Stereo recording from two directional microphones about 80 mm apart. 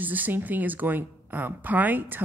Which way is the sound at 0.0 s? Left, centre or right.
Right.